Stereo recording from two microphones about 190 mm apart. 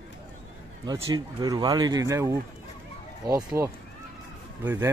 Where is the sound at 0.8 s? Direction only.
20° right (ahead or behind).